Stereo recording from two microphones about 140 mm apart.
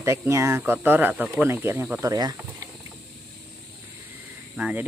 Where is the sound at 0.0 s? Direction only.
20° right (ahead or behind).